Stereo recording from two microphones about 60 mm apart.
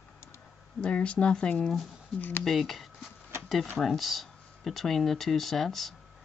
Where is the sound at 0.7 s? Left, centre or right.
Centre.